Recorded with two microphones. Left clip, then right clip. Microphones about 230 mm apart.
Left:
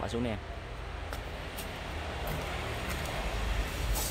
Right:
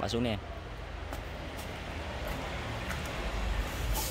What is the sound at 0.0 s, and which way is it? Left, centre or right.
Speech, centre.